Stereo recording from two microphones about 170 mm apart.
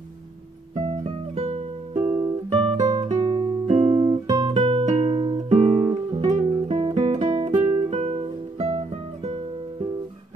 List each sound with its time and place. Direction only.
0.7 s music: 40° right (ahead or behind)
2.0 s music: 15° right (ahead or behind)
2.5 s music: 25° right (ahead or behind)
3.6 s music: 40° right (ahead or behind)
6.5 s guitar: 30° right (ahead or behind)
7.2 s music: 30° right (ahead or behind)
7.5 s guitar: 15° right (ahead or behind)
7.9 s music: 35° right (ahead or behind)